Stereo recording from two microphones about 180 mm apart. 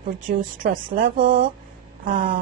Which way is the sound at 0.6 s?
50° right (ahead or behind).